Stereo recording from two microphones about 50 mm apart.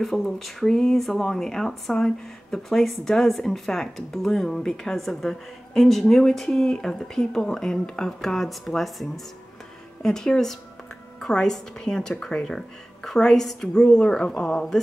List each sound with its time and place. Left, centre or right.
0.0 s speech: centre
14.0 s a woman's voice: left